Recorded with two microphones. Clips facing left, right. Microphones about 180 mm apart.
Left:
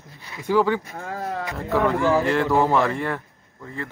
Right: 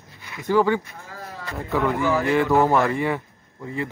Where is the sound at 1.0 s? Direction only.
65° left (ahead or behind).